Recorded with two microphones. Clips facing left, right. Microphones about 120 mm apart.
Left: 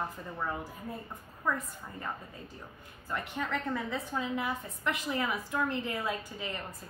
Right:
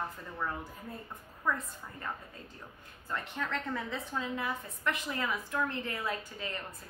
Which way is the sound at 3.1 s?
10° left (ahead or behind).